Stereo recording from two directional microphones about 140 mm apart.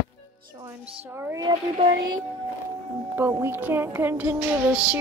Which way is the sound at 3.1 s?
20° right (ahead or behind).